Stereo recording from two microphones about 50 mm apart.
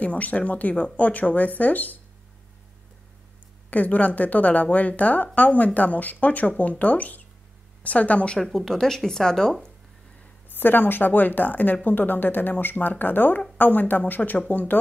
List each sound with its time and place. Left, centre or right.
0.0 s a woman's voice: left
3.7 s a woman's voice: left
8.4 s speech: centre
10.5 s a woman's voice: left